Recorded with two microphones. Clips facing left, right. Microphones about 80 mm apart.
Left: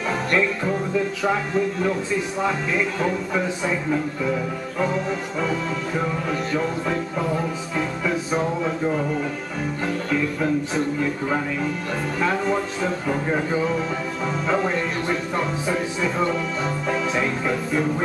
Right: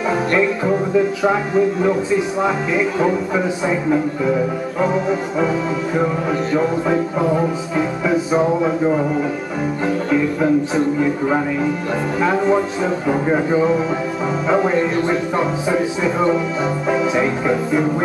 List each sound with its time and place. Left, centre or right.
0.3 s music: centre
11.0 s music: centre